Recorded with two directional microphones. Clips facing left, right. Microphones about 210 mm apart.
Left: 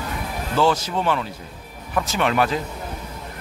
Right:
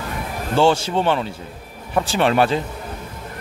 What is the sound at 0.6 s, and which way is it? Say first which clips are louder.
Speech: right 3 dB; 30° right (ahead or behind).